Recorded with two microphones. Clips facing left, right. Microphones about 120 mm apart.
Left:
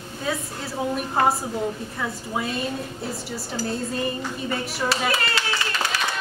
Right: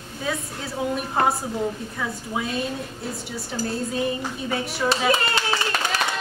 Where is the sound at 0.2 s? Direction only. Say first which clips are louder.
Even; centre (ahead or behind).